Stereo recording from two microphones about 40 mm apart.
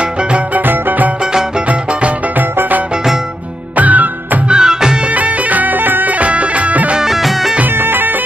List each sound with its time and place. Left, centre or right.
0.6 s music: right
1.7 s music: right
2.3 s music: right
4.5 s music: centre
5.1 s music: right
6.1 s music: right
7.0 s music: centre
7.6 s music: right